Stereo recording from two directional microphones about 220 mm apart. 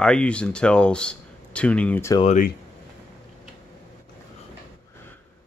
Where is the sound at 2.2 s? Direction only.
30° left (ahead or behind).